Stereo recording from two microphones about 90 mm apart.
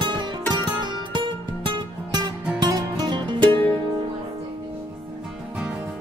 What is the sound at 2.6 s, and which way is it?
Music, 45° right (ahead or behind).